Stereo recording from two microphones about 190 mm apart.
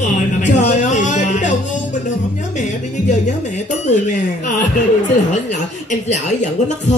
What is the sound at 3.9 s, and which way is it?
Speech, 40° left (ahead or behind).